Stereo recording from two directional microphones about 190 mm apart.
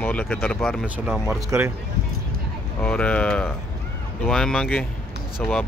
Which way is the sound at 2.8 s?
5° left (ahead or behind).